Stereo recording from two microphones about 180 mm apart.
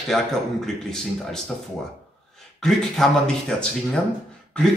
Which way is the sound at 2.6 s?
Centre (ahead or behind).